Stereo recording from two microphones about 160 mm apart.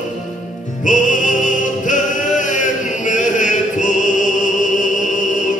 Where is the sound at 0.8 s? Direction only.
55° left (ahead or behind).